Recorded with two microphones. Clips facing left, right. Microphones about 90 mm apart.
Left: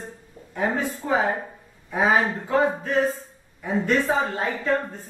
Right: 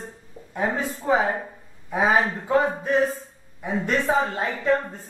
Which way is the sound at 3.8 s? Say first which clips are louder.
Even; 20° right (ahead or behind).